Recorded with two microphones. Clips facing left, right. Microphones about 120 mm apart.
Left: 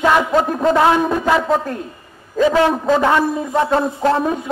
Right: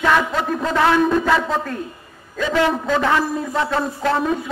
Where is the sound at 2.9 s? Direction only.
20° left (ahead or behind).